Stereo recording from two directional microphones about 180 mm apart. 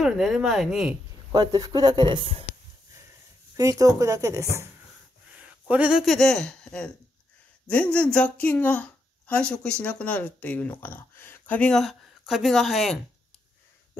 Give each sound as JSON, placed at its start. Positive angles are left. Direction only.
{"t": 0.0, "sound": "speech", "side_deg": 0}
{"t": 1.3, "sound": "speech", "side_deg": -20}
{"t": 3.5, "sound": "speech", "side_deg": -20}